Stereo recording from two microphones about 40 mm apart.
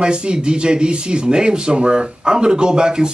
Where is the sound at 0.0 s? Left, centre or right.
Right.